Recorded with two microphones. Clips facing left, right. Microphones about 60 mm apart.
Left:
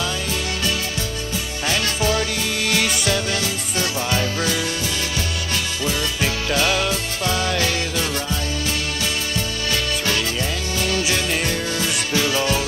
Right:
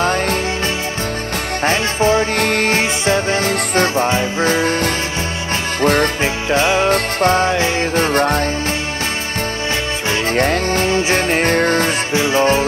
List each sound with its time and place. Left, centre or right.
0.0 s music: right
1.6 s music: right
2.3 s music: right
6.2 s music: right
6.9 s music: right
7.9 s music: right
10.3 s music: right
10.9 s music: right
12.1 s music: right